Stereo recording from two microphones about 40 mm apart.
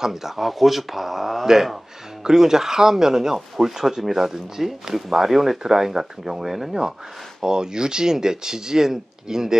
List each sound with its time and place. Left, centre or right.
0.0 s speech: centre
7.4 s speech: centre